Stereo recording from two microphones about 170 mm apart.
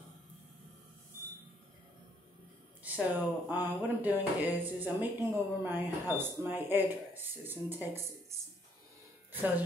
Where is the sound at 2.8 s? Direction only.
10° right (ahead or behind).